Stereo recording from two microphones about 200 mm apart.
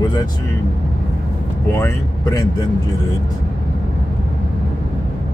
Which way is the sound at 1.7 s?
15° left (ahead or behind).